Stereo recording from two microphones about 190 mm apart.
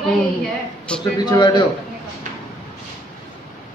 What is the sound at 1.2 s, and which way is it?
Speech, 20° left (ahead or behind).